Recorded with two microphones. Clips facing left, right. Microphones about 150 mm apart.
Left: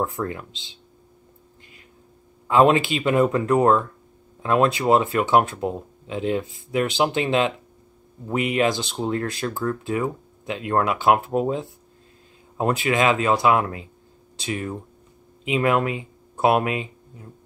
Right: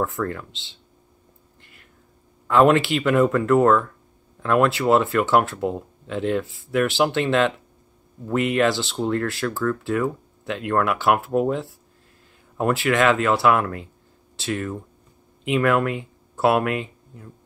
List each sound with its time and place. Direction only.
0.0 s speech: 15° left (ahead or behind)
1.6 s a sound: 15° left (ahead or behind)
2.4 s speech: 15° left (ahead or behind)